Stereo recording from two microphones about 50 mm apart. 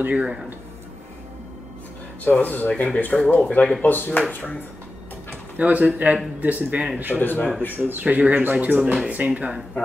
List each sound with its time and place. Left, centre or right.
0.0 s speech: right
2.4 s speech: left
5.6 s speech: right
7.2 s speech: left
7.7 s speech: right
8.0 s speech: right